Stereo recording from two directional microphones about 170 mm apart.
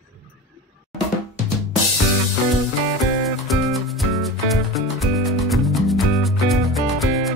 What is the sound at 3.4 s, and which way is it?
Music, centre (ahead or behind).